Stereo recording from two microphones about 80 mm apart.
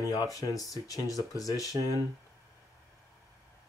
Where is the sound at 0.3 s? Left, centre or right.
Left.